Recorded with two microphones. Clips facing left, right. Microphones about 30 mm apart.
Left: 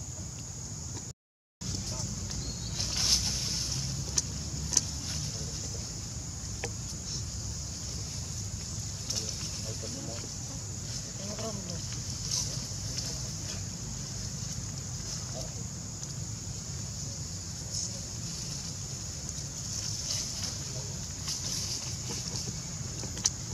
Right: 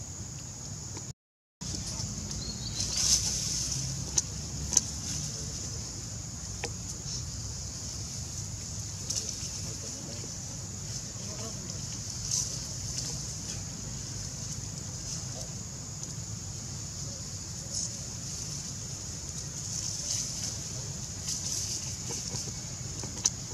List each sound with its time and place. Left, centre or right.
3.0 s vehicle: left
11.2 s a sound: centre
21.3 s vehicle: centre